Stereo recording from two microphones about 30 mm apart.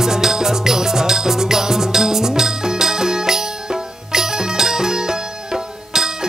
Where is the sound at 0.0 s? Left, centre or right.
Centre.